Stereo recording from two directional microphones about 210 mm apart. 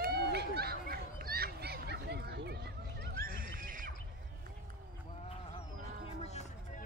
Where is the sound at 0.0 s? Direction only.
50° right (ahead or behind).